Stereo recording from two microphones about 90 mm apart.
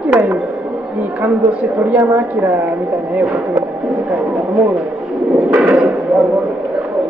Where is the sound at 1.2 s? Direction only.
10° right (ahead or behind).